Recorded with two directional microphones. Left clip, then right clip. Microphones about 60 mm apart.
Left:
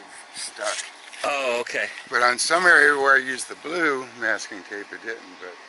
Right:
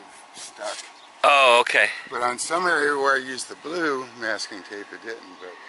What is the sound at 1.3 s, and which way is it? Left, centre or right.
Speech, right.